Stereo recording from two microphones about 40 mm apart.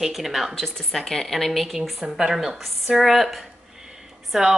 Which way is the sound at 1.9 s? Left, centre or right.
Centre.